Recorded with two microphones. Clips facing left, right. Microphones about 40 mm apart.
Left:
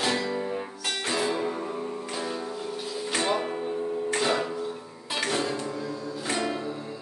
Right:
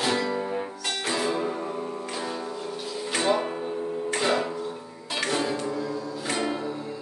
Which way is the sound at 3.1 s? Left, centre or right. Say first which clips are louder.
Right 3 dB; centre.